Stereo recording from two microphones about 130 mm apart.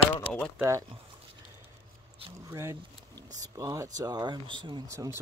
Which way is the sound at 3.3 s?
25° right (ahead or behind).